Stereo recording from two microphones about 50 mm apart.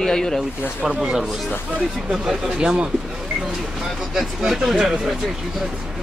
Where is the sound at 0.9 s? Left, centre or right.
Centre.